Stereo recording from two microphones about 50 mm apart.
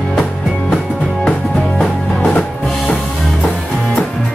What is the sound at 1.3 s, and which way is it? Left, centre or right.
Music, left.